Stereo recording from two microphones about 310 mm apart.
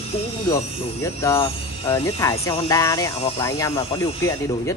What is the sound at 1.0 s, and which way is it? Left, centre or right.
Speech, centre.